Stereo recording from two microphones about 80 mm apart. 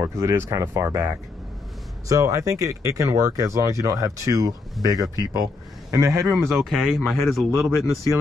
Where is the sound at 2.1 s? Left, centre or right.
Right.